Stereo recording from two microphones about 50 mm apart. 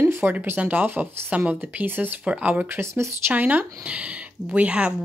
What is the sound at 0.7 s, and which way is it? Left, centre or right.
Speech, right.